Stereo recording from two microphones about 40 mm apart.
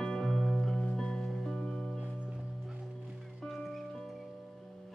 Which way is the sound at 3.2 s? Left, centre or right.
Centre.